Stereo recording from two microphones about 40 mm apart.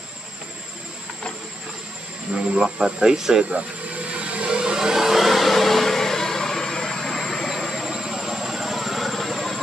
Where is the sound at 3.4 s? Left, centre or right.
Right; by 7.5 s centre.